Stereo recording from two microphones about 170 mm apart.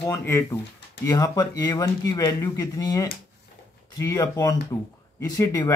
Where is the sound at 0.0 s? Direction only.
10° left (ahead or behind).